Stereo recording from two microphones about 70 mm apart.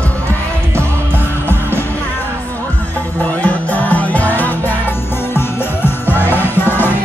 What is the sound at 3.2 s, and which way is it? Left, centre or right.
Music, left.